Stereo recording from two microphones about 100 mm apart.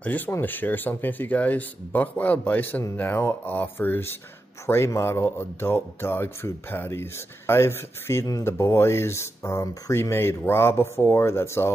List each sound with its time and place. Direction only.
0.3 s speech: 20° left (ahead or behind)